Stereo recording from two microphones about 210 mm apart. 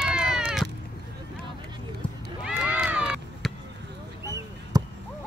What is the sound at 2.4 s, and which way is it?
Run, 5° right (ahead or behind).